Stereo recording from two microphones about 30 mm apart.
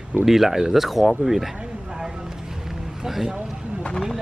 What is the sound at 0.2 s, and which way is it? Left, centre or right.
Speech, centre.